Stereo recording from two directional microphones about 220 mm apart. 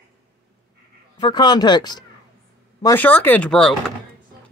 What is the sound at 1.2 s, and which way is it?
Speech, 20° left (ahead or behind).